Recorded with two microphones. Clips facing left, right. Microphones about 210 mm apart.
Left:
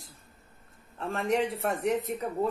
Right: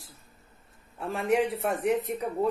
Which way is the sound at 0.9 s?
5° right (ahead or behind).